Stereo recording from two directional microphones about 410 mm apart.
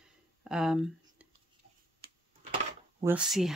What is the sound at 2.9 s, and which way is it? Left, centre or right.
Speech, centre.